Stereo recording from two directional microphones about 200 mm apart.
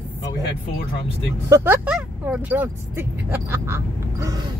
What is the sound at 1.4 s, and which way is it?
Speech, 15° right (ahead or behind).